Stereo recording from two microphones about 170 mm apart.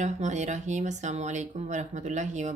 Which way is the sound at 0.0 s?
45° right (ahead or behind).